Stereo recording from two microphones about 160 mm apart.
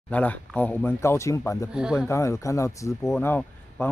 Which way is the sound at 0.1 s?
10° left (ahead or behind).